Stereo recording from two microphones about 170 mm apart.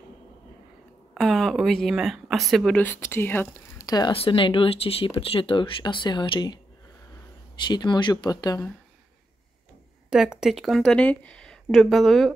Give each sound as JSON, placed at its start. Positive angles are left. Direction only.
{"t": 1.1, "sound": "speech", "side_deg": 0}
{"t": 7.6, "sound": "speech", "side_deg": 25}
{"t": 10.0, "sound": "speech", "side_deg": -5}